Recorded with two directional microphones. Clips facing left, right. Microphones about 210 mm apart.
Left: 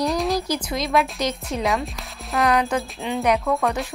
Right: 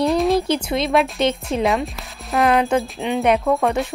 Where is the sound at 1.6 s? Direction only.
Centre (ahead or behind).